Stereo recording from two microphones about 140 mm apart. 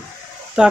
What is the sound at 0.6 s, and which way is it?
Speech, 5° right (ahead or behind).